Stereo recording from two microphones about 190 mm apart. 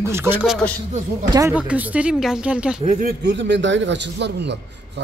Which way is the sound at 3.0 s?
55° right (ahead or behind).